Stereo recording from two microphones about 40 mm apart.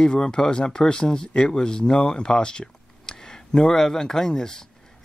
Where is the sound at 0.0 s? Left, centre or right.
Left.